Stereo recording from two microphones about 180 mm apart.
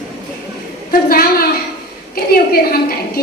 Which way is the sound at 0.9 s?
55° left (ahead or behind).